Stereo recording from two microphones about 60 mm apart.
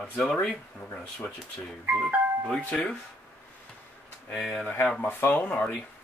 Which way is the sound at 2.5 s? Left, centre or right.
Centre.